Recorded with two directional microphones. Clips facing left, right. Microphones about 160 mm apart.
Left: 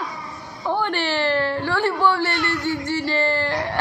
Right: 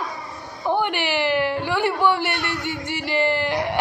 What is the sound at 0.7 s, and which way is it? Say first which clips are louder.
Speech: right 1 dB; 15° right (ahead or behind).